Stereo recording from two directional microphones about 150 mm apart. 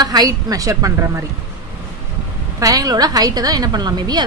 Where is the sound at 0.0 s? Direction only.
25° right (ahead or behind).